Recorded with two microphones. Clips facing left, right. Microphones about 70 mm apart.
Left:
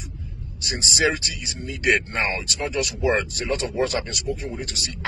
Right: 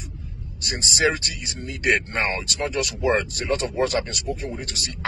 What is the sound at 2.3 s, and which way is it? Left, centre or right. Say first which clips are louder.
Speech: even; right.